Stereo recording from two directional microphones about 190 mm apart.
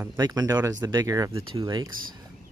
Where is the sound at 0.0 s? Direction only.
15° right (ahead or behind).